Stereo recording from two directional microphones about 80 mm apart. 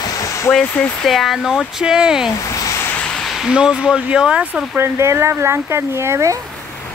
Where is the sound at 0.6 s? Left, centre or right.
Centre.